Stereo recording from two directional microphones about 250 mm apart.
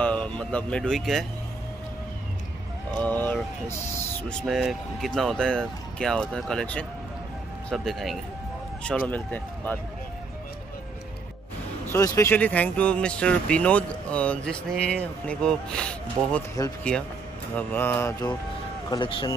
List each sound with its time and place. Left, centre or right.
0.0 s speech: centre
3.0 s speech: centre
11.9 s speech: centre